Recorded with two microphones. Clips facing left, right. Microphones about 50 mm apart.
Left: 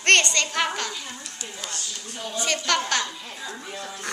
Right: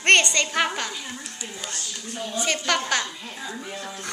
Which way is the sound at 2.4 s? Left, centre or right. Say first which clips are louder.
Even; centre.